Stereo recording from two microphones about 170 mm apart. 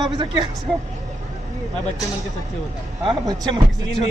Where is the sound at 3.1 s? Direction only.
25° right (ahead or behind).